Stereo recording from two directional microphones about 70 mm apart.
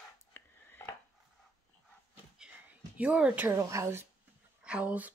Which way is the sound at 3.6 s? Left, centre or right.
Right.